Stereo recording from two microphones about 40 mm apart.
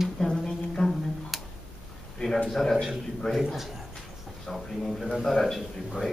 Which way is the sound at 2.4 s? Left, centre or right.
Centre.